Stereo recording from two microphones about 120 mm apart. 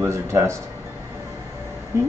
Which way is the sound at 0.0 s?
20° right (ahead or behind).